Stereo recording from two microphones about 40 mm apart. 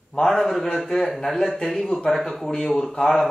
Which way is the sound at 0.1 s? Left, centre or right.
Centre.